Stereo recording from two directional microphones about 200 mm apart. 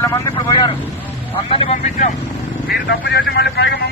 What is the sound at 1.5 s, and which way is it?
Speech, 30° left (ahead or behind).